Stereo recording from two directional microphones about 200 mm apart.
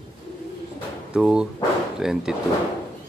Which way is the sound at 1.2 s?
5° right (ahead or behind).